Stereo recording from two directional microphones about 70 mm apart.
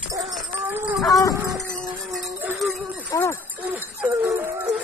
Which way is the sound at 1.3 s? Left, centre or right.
Right.